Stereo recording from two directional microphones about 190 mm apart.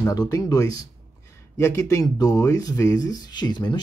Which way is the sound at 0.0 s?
20° left (ahead or behind).